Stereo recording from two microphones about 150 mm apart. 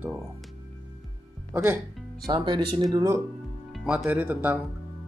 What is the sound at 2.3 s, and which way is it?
Speech, 30° right (ahead or behind).